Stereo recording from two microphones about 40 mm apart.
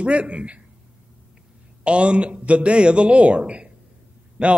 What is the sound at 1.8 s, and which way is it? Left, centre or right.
A man's voice, right.